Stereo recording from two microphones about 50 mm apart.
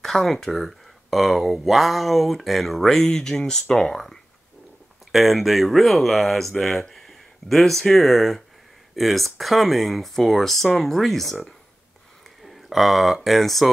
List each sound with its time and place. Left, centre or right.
0.0 s speech: centre
5.1 s speech: centre
12.4 s speech: centre